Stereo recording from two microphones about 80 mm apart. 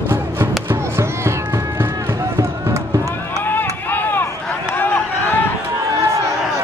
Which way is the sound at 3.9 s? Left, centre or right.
Left.